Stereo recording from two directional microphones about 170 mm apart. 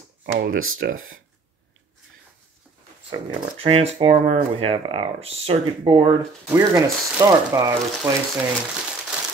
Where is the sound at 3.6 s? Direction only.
35° right (ahead or behind).